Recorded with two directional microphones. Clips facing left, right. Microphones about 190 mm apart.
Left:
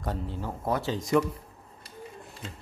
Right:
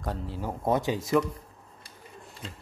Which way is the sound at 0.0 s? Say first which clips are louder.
Left 1 dB; centre (ahead or behind).